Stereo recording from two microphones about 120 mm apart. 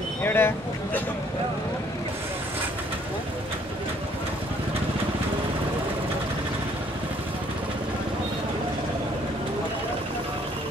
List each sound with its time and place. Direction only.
0.2 s vehicle: 15° left (ahead or behind)